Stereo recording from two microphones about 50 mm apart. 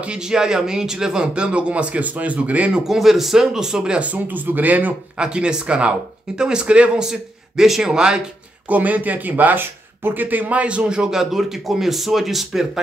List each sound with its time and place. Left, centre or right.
0.0 s speech: centre
2.9 s speech: centre
4.0 s speech: right
5.1 s speech: centre
7.1 s speech: centre
8.6 s speech: right
10.6 s a man's voice: right; by 12.8 s centre